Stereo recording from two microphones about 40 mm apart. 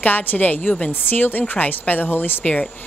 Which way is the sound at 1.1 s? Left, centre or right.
Left.